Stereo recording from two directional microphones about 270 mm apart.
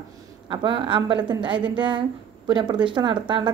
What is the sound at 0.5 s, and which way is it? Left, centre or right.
Speech, centre.